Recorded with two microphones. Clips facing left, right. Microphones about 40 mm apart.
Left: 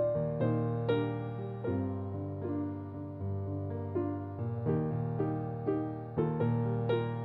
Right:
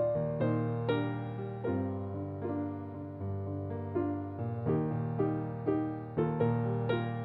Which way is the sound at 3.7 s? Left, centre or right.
Right.